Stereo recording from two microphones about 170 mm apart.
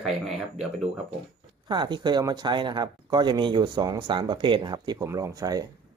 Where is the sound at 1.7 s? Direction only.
25° right (ahead or behind).